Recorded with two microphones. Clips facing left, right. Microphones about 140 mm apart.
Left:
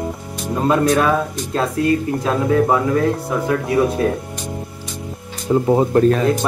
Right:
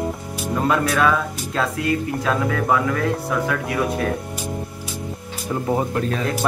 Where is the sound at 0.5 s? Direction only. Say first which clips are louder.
Left 5 dB; 30° left (ahead or behind).